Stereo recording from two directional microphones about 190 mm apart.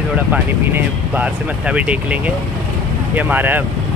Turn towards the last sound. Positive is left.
turn(degrees=-10)  # may be behind; listen again after turning